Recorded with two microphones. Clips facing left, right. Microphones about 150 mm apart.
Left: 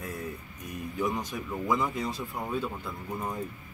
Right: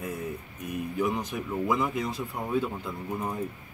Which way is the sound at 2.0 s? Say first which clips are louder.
Right 1 dB; 15° right (ahead or behind).